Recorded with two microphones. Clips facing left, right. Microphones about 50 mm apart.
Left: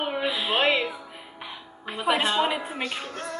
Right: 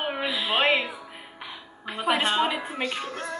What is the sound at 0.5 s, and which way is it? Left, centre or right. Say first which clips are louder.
Music: right 1 dB; centre.